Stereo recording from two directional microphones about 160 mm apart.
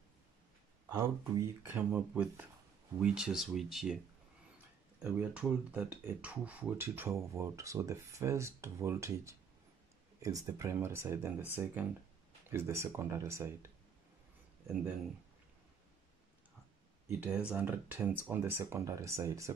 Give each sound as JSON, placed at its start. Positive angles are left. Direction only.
{"t": 0.8, "sound": "speech", "side_deg": -20}
{"t": 5.0, "sound": "speech", "side_deg": -5}
{"t": 17.2, "sound": "speech", "side_deg": -10}